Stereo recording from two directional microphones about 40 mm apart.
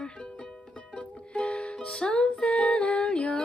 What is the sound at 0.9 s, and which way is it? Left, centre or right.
Music, left.